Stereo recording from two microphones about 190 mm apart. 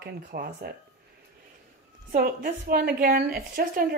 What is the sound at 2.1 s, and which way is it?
A woman's voice, 50° right (ahead or behind).